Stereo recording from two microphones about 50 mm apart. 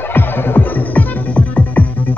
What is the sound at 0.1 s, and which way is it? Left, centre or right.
Music, left.